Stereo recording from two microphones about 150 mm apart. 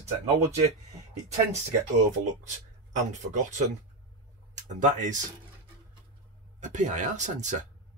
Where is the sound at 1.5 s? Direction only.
50° right (ahead or behind).